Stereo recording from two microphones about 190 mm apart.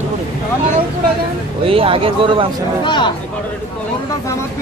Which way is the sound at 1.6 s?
30° right (ahead or behind).